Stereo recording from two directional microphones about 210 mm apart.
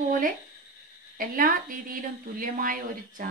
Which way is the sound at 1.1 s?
40° right (ahead or behind).